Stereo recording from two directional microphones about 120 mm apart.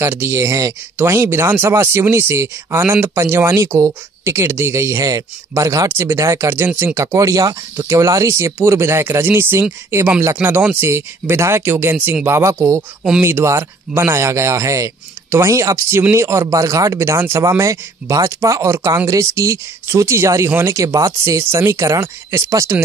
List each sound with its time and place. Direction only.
0.0 s speech: 20° right (ahead or behind)